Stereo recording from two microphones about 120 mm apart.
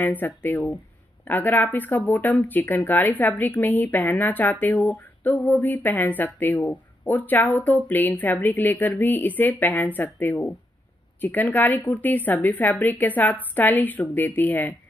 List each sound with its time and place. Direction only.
0.0 s speech: 15° left (ahead or behind)